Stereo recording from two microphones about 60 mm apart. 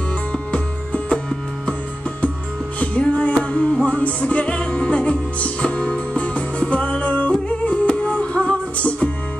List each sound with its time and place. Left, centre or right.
0.3 s music: centre
2.8 s music: centre